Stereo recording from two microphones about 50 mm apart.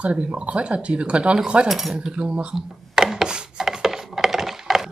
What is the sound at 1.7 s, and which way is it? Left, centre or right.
Speech, centre.